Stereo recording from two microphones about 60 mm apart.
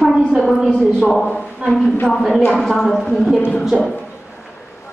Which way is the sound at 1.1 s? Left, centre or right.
Centre.